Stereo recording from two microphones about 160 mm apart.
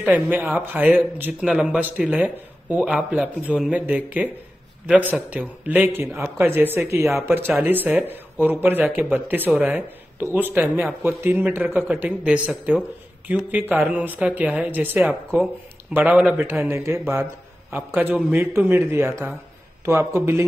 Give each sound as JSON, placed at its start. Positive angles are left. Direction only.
{"t": 0.0, "sound": "a man's voice", "side_deg": -10}